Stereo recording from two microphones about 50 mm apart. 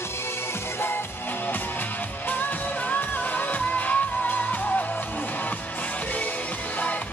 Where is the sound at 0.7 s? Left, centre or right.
Left.